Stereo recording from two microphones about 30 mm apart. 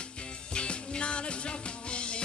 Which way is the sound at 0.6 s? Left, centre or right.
Left.